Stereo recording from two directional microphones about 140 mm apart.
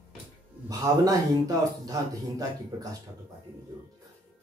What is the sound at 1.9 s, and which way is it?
Speech, 25° right (ahead or behind).